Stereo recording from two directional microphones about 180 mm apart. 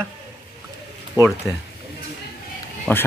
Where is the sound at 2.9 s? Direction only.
5° left (ahead or behind).